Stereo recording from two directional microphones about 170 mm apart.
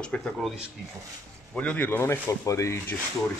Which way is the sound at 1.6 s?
10° left (ahead or behind).